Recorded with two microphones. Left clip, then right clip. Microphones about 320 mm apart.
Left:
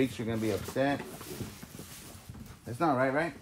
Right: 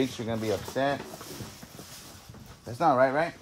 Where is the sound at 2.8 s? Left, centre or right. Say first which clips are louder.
Right 5 dB; centre.